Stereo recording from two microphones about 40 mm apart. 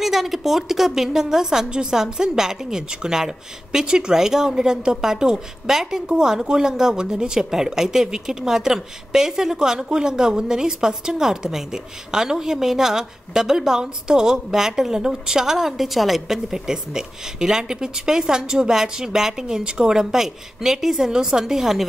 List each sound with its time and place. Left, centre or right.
0.0 s speech: centre